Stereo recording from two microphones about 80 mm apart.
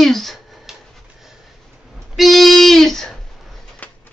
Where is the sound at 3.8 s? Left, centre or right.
Centre.